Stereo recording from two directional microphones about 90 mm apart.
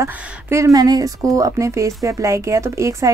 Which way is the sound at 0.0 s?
35° right (ahead or behind).